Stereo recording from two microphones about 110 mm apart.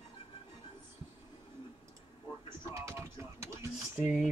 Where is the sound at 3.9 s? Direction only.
5° right (ahead or behind).